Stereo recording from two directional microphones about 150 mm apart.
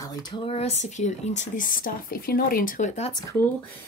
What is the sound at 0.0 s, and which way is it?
Speech, 25° left (ahead or behind).